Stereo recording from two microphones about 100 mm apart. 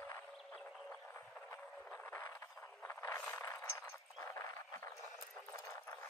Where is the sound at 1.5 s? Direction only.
25° left (ahead or behind).